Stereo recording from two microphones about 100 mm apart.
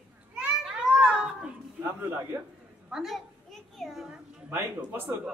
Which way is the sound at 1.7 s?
20° right (ahead or behind).